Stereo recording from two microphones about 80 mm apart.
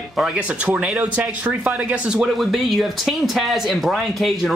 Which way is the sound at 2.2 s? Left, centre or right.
Centre.